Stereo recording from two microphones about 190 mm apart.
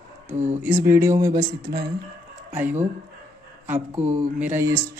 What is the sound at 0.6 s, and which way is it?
Speech, 10° right (ahead or behind).